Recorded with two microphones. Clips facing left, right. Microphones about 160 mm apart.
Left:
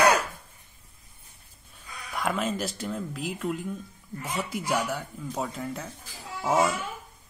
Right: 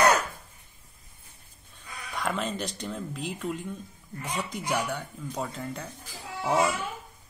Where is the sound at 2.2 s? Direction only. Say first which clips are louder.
Left 2 dB; 5° left (ahead or behind).